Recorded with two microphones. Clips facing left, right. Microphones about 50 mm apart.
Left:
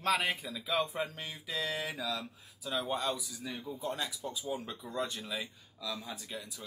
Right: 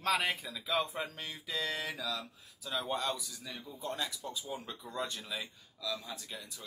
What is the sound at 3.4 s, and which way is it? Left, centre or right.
Speech, centre.